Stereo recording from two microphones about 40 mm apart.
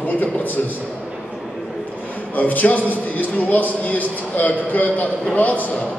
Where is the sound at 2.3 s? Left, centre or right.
Left.